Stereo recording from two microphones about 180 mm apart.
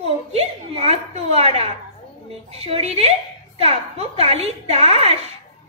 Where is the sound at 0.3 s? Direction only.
35° right (ahead or behind).